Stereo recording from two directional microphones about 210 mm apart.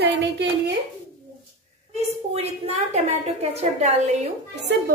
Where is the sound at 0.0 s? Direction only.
50° right (ahead or behind).